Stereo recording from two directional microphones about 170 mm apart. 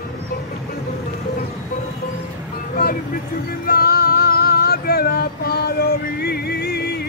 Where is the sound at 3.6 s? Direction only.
60° left (ahead or behind).